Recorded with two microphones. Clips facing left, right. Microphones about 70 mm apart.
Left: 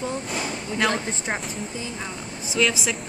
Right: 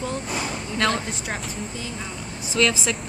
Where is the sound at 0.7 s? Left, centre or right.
Centre.